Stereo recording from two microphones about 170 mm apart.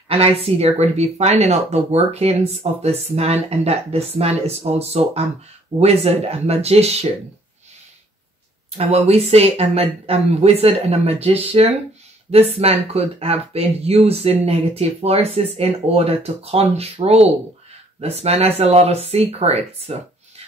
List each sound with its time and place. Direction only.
0.1 s speech: 35° right (ahead or behind)
8.7 s speech: 35° right (ahead or behind)